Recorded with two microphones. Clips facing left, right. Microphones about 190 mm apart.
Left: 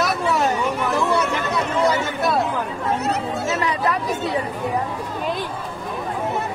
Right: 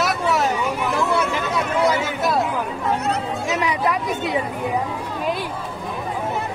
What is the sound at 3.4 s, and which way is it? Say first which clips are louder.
Speech: right 2 dB; 15° right (ahead or behind).